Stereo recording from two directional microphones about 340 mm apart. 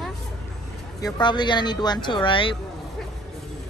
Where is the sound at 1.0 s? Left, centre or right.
Centre.